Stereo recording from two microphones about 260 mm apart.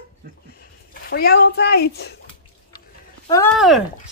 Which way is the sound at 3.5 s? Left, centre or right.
Centre.